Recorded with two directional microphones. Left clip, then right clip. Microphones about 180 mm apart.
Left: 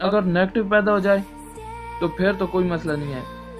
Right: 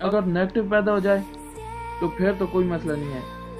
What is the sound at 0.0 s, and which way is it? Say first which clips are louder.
Speech: left 3 dB; 25° left (ahead or behind).